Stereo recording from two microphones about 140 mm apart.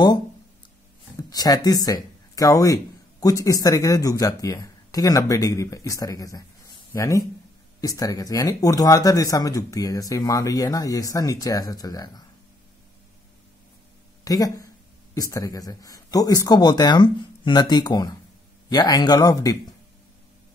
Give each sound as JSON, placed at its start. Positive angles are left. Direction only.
{"t": 1.3, "sound": "speech", "side_deg": 30}
{"t": 14.2, "sound": "speech", "side_deg": 25}